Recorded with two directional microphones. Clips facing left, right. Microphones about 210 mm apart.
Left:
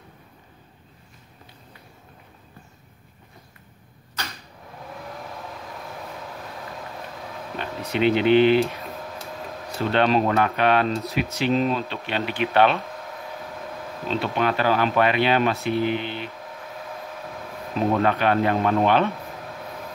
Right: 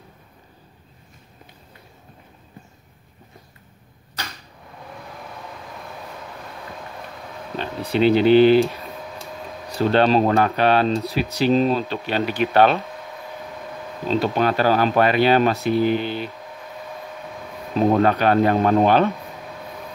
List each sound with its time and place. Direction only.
7.5 s speech: 30° right (ahead or behind)
8.6 s a sound: centre (ahead or behind)
9.8 s speech: 35° right (ahead or behind)
14.0 s speech: 40° right (ahead or behind)
17.7 s speech: 35° right (ahead or behind)